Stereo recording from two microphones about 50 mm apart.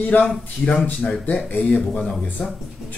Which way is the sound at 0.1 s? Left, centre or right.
Left.